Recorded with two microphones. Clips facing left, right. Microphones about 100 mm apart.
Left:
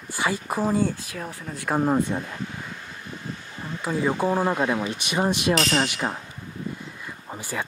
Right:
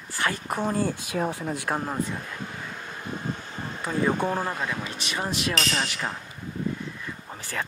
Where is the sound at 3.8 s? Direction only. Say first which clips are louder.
Left 1 dB; 5° left (ahead or behind).